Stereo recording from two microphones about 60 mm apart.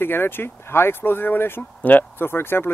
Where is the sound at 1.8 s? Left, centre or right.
Left.